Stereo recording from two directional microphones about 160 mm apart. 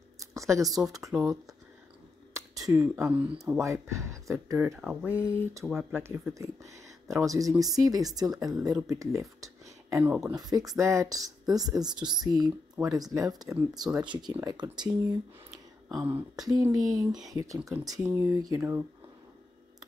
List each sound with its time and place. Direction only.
0.2 s a sound: 20° right (ahead or behind)
2.7 s speech: 15° right (ahead or behind)
4.7 s speech: 5° right (ahead or behind)
10.2 s speech: 25° right (ahead or behind)